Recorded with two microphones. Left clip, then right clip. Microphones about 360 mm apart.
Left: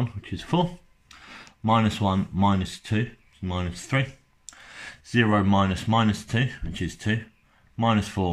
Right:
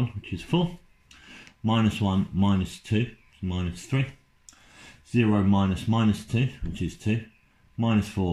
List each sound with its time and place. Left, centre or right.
0.2 s speech: left
1.2 s a sound: left
2.0 s speech: left